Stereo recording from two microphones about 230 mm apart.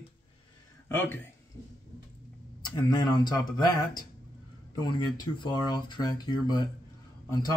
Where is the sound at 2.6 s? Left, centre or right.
Centre.